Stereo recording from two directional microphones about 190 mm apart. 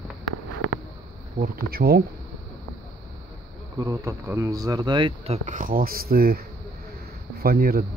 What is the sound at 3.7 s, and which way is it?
Speech, 15° right (ahead or behind).